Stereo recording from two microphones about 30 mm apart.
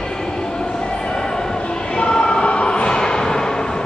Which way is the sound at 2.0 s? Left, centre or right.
Left.